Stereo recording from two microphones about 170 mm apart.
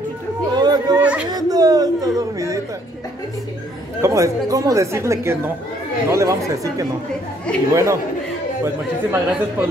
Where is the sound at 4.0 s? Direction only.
20° right (ahead or behind).